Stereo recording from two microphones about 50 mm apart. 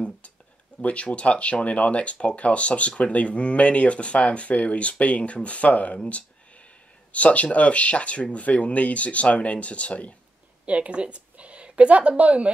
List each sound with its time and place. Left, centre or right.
0.7 s speech: left
7.1 s speech: left
10.6 s a woman's voice: right